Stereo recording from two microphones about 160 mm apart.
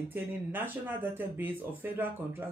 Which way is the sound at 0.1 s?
15° right (ahead or behind).